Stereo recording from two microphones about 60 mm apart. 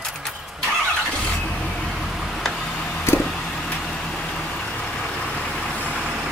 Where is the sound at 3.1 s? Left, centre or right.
Centre.